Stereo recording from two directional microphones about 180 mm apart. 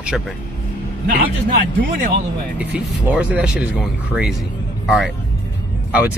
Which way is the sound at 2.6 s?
10° right (ahead or behind).